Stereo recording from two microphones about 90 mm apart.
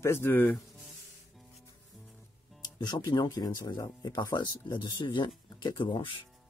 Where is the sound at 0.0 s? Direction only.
25° left (ahead or behind).